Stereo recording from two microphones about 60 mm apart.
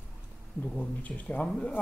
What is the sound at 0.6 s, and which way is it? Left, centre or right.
Speech, left.